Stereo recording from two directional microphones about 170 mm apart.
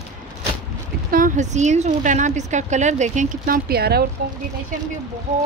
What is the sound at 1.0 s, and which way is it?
Speech, 55° right (ahead or behind).